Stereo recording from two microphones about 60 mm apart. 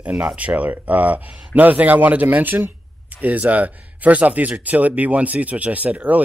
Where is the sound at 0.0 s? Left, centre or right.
Right.